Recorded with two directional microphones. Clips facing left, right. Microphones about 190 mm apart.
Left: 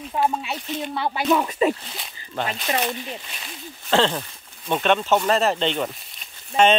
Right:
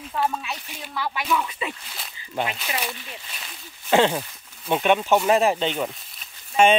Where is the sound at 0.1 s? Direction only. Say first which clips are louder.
Left 3 dB; 25° left (ahead or behind).